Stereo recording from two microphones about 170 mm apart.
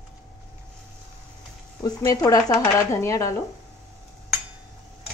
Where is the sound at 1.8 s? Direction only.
20° left (ahead or behind).